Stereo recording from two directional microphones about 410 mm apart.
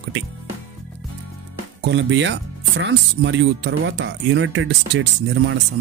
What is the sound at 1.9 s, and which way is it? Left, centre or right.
Speech, right.